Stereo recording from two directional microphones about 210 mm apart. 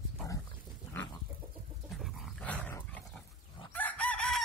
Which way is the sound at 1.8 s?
Centre (ahead or behind).